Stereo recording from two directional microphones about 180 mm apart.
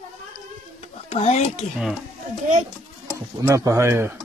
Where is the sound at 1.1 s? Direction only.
35° left (ahead or behind).